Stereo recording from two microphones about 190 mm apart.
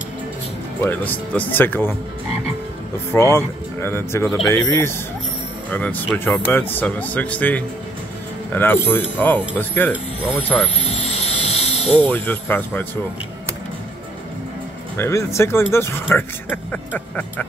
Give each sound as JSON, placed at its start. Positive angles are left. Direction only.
{"t": 0.8, "sound": "speech", "side_deg": 10}
{"t": 3.1, "sound": "speech", "side_deg": 10}
{"t": 11.1, "sound": "a sound", "side_deg": 35}
{"t": 12.1, "sound": "speech", "side_deg": 10}
{"t": 15.0, "sound": "speech", "side_deg": 15}